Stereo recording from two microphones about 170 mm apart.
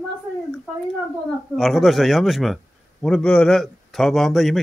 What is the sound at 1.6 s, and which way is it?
A man's voice, centre (ahead or behind).